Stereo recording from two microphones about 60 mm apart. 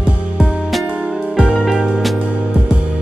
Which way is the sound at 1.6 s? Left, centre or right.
Centre.